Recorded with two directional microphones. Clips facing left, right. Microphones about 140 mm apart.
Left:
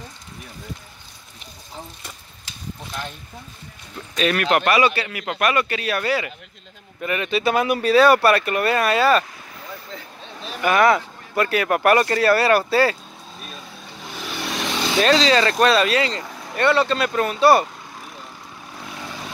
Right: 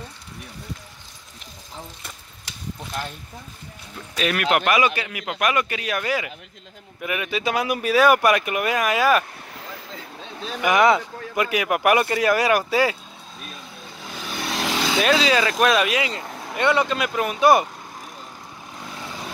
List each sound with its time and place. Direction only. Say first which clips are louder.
4.1 s speech: left 2 dB; 10° right (ahead or behind)
10.6 s speech: left 1 dB; 15° right (ahead or behind)
15.0 s speech: left 3 dB; 10° right (ahead or behind)